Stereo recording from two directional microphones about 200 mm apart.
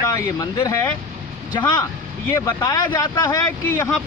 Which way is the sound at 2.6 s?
20° left (ahead or behind).